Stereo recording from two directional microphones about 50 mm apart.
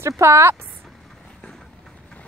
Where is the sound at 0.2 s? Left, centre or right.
Right.